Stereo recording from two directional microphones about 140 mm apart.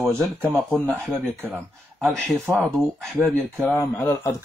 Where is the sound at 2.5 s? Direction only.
Centre (ahead or behind).